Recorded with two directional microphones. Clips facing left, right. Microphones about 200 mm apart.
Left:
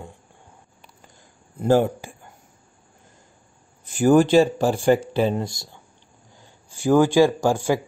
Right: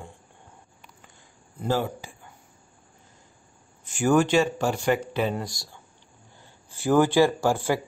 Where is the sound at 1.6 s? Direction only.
50° left (ahead or behind).